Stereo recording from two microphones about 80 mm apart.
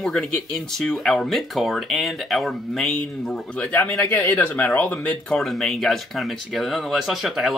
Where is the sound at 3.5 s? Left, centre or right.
Centre.